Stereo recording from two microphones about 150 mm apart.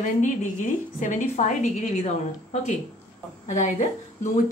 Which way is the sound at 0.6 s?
60° left (ahead or behind).